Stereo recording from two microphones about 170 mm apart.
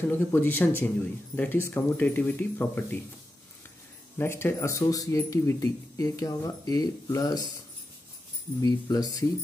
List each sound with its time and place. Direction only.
0.1 s speech: 10° left (ahead or behind)
4.2 s speech: 15° left (ahead or behind)
8.5 s speech: 20° left (ahead or behind)